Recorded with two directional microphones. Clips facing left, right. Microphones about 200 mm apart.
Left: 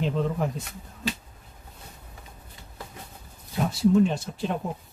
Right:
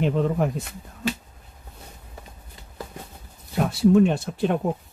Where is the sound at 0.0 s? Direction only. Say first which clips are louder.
Right 4 dB; 60° right (ahead or behind).